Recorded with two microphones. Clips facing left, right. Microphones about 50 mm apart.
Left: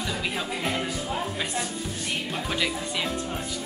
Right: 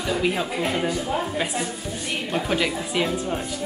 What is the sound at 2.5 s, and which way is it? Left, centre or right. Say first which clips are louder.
Speech: right 4 dB; centre.